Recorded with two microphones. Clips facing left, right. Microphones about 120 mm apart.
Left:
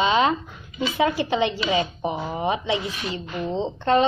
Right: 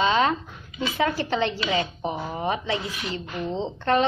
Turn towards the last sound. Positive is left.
turn(degrees=15)  # may be behind; listen again after turning